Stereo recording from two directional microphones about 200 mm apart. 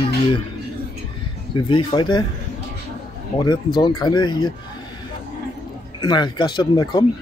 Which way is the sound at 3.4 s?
20° left (ahead or behind).